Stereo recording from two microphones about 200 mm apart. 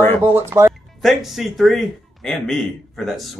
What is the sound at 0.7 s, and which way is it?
Speech, centre (ahead or behind).